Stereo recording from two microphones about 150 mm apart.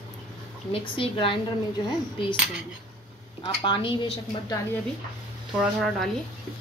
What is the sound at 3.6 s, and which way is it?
Speech, 35° left (ahead or behind).